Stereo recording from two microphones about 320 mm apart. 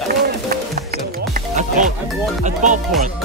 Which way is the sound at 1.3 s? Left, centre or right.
Right.